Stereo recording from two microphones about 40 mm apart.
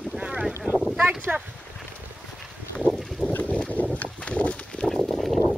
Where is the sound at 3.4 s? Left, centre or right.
Left.